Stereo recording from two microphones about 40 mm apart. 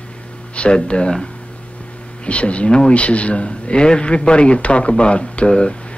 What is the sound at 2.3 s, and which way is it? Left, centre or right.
Speech, left.